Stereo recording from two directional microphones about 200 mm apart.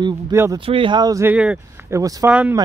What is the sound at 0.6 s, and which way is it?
Speech, 25° right (ahead or behind).